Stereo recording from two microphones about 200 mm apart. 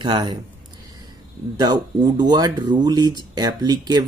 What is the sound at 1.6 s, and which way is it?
Speech, 20° right (ahead or behind).